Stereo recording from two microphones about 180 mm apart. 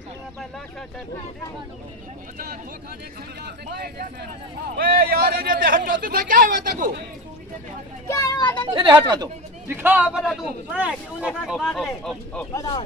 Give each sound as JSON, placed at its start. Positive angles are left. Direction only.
{"t": 2.3, "sound": "speech", "side_deg": -50}
{"t": 3.4, "sound": "speech", "side_deg": -65}
{"t": 8.1, "sound": "speech", "side_deg": 20}
{"t": 8.7, "sound": "speech", "side_deg": -25}
{"t": 9.7, "sound": "speech", "side_deg": -10}
{"t": 12.5, "sound": "speech", "side_deg": 20}